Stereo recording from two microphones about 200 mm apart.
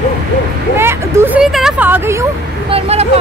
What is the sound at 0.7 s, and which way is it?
Speech, 10° right (ahead or behind).